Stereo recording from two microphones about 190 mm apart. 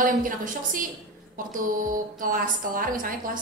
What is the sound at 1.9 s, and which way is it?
A woman's voice, 45° right (ahead or behind).